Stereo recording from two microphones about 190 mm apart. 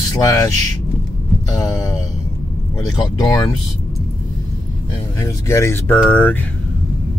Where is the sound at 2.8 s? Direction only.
20° left (ahead or behind).